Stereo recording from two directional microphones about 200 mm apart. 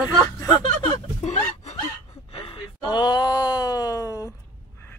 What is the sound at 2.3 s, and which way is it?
Wail, 25° left (ahead or behind).